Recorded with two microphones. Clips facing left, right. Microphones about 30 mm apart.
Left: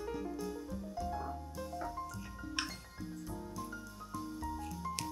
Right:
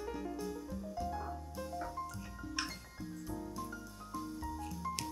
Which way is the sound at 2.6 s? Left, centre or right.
Left.